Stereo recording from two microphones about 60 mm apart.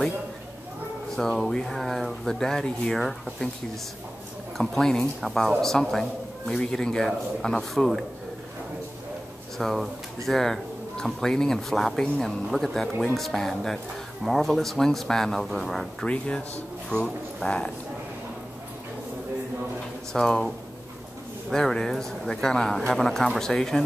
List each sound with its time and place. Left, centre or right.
1.1 s speech: centre
4.6 s speech: centre
9.6 s speech: centre
16.0 s speech: centre
16.9 s speech: right
20.1 s speech: centre